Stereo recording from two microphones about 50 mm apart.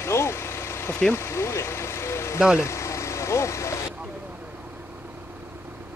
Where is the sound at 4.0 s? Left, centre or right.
Right.